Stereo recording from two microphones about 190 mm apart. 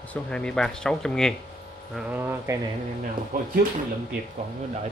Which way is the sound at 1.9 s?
10° right (ahead or behind).